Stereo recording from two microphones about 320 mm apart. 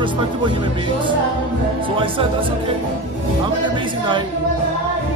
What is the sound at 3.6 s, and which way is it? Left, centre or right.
Speech, centre.